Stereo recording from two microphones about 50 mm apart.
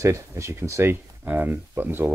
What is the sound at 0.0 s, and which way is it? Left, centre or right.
Speech, right.